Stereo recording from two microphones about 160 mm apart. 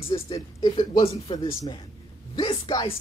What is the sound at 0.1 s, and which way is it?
Speech, 30° left (ahead or behind).